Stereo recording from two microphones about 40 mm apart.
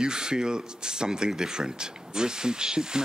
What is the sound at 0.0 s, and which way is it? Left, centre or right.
Speech, centre.